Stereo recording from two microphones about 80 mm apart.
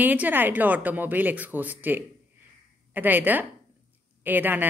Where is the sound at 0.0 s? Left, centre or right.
Right.